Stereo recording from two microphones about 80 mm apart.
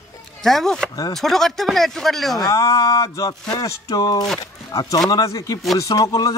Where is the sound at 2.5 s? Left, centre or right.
Left.